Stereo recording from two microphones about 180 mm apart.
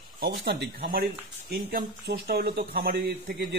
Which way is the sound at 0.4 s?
80° right.